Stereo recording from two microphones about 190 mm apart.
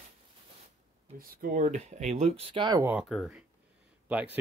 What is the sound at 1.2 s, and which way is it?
Speech, 50° right (ahead or behind).